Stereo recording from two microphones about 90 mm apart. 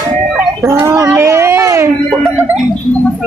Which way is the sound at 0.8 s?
35° right (ahead or behind).